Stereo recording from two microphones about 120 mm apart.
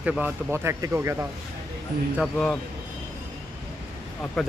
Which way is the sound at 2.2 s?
5° left (ahead or behind).